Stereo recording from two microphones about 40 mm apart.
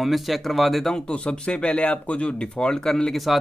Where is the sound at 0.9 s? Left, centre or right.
Left.